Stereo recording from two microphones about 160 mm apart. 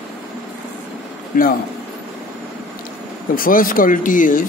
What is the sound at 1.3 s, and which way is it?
Speech, 60° left (ahead or behind).